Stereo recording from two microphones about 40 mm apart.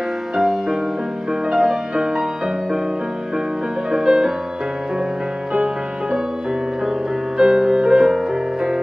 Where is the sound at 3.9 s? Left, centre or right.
Centre.